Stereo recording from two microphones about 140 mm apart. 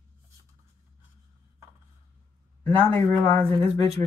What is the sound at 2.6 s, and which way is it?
Speech, 15° left (ahead or behind).